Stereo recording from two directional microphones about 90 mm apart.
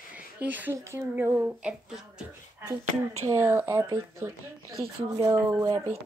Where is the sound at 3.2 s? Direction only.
30° right (ahead or behind).